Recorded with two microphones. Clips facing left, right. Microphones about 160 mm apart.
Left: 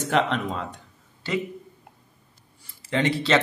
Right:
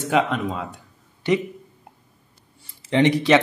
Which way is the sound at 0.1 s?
10° right (ahead or behind).